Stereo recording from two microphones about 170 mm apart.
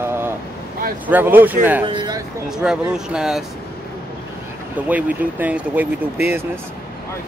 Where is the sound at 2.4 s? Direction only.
5° right (ahead or behind).